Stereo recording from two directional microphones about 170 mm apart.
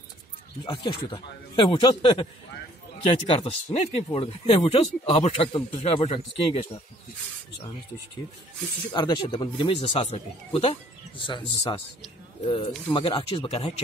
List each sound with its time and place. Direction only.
0.7 s speech: 30° left (ahead or behind)
8.9 s speech: 25° left (ahead or behind)
12.8 s speech: 25° left (ahead or behind)